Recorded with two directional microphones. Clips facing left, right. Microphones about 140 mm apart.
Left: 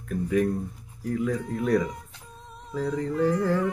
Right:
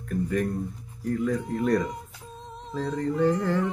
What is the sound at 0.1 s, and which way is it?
Speech, centre (ahead or behind).